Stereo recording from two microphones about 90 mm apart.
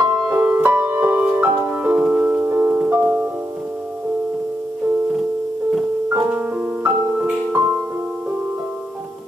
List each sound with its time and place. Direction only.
0.3 s music: 20° right (ahead or behind)
2.0 s music: 10° right (ahead or behind)
2.2 s music: 20° right (ahead or behind)
6.0 s music: 20° right (ahead or behind)